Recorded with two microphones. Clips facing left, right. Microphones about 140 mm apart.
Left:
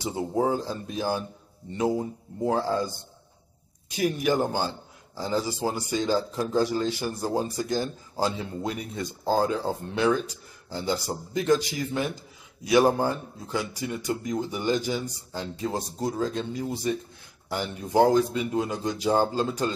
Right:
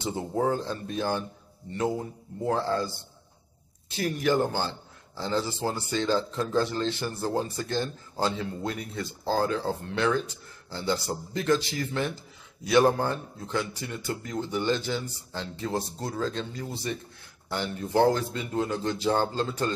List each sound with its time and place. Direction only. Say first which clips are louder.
0.0 s a man's voice: left 2 dB; 10° left (ahead or behind)